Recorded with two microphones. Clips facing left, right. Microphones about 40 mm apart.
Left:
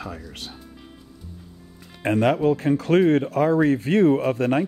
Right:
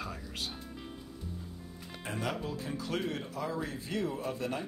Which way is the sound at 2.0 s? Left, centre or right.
Left.